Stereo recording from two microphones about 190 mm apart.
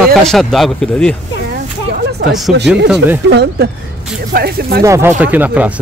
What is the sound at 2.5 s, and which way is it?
Speech, 65° right (ahead or behind).